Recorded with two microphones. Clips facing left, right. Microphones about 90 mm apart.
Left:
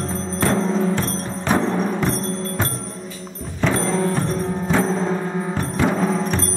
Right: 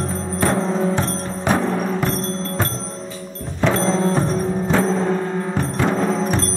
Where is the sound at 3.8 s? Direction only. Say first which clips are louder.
Right 2 dB; 20° right (ahead or behind).